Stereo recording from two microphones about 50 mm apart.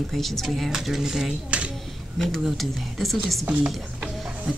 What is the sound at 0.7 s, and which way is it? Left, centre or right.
Speech, centre.